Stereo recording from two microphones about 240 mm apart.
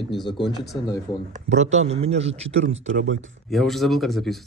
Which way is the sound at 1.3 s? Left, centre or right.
Right.